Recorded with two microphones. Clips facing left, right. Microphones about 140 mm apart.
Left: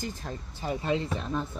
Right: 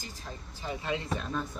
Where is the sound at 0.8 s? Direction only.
30° left (ahead or behind).